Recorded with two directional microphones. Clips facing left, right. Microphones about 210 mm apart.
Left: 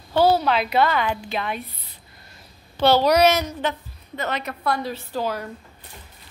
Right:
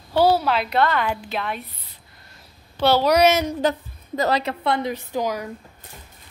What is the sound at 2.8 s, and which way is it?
Speech, 5° right (ahead or behind).